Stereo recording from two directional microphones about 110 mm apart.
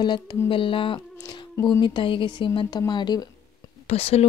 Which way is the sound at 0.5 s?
50° left (ahead or behind).